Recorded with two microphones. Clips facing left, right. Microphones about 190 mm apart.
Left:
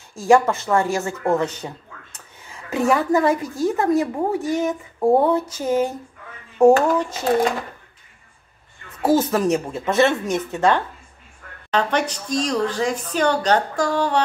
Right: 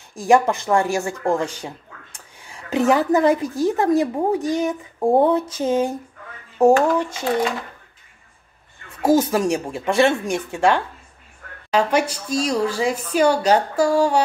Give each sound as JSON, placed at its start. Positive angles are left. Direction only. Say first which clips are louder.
{"t": 0.1, "sound": "speech", "louder": "even", "side_deg": -15}
{"t": 5.2, "sound": "a sound", "louder": "right 2 dB", "side_deg": -20}
{"t": 6.6, "sound": "speech", "louder": "left 1 dB", "side_deg": -10}
{"t": 9.0, "sound": "speech", "louder": "right 1 dB", "side_deg": -10}